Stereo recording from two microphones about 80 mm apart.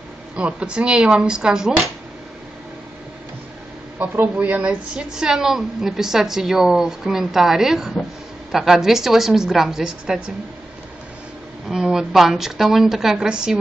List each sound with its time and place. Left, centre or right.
0.4 s speech: centre
4.0 s speech: right
5.1 s a woman's voice: centre
11.7 s a woman's voice: centre